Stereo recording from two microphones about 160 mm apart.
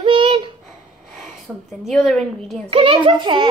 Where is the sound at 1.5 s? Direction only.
5° right (ahead or behind).